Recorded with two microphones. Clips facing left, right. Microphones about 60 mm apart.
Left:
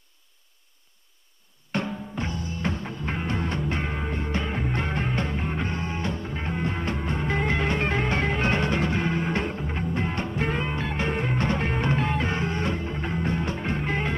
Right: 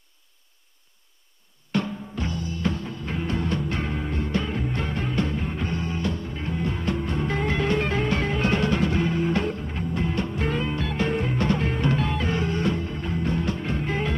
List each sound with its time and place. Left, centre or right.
1.7 s music: left